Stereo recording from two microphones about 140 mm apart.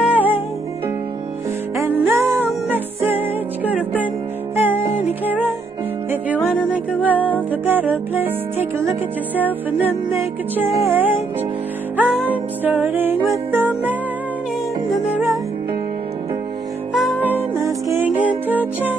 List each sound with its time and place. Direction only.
0.0 s music: 10° right (ahead or behind)
1.8 s music: 20° right (ahead or behind)
6.7 s music: 10° right (ahead or behind)
16.9 s music: 10° right (ahead or behind)